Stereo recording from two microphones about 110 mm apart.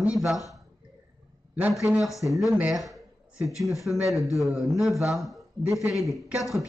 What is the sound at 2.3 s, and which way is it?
Speech, centre (ahead or behind).